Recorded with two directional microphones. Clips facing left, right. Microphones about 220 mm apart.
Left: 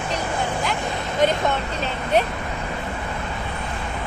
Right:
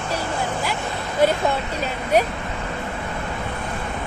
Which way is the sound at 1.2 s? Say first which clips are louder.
Right 2 dB; 10° right (ahead or behind).